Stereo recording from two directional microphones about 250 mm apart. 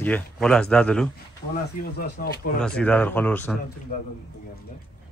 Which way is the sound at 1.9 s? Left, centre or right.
Left.